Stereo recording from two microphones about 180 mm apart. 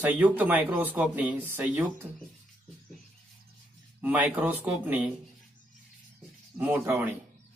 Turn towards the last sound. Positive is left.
turn(degrees=-10)  # may be behind; listen again after turning